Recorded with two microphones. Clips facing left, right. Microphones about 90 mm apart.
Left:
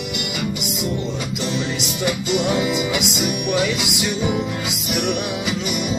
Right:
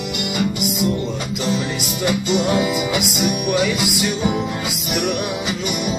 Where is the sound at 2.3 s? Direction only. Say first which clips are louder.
Right 1 dB; 5° left (ahead or behind).